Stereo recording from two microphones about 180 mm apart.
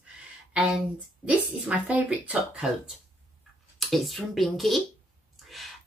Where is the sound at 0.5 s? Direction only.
5° right (ahead or behind).